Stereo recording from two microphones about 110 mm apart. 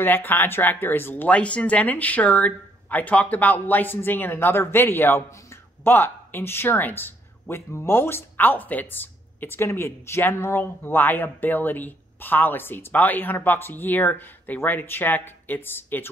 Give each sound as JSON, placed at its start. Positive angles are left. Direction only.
{"t": 0.0, "sound": "speech", "side_deg": 20}